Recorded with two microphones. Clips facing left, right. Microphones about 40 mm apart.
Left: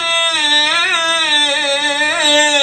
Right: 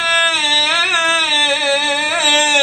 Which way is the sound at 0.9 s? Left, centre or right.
Right.